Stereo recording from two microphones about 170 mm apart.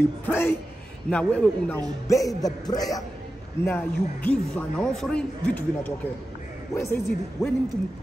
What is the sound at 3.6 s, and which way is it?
A man's voice, 10° left (ahead or behind).